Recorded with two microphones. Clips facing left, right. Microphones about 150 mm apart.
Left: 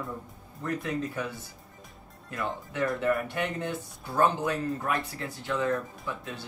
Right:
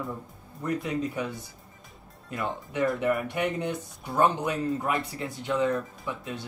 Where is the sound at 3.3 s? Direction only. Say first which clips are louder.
Right 3 dB; 20° right (ahead or behind).